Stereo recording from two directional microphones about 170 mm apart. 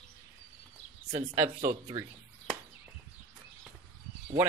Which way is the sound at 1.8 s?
15° right (ahead or behind).